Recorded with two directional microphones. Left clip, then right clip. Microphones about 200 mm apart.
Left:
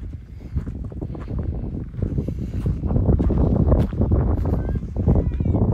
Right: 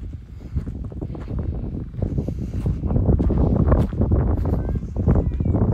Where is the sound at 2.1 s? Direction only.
30° right (ahead or behind).